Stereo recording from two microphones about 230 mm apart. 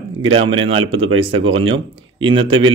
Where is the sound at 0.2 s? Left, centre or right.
Right.